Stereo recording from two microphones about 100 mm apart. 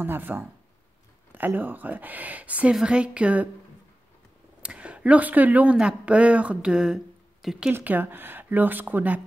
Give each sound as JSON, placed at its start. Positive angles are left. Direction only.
{"t": 0.0, "sound": "speech", "side_deg": -20}
{"t": 4.6, "sound": "speech", "side_deg": -10}